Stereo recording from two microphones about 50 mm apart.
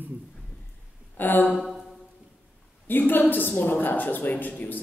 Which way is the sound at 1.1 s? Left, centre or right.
Left.